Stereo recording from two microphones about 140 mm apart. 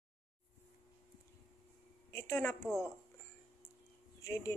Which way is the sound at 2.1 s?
20° left (ahead or behind).